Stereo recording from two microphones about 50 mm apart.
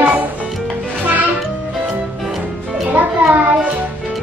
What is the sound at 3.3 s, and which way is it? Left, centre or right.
Speech, right.